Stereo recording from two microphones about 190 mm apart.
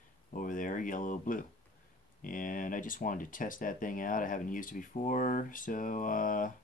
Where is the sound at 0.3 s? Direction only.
45° left (ahead or behind).